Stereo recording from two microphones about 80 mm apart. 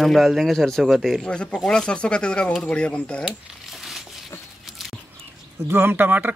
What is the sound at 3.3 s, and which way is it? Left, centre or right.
Crumpling, centre.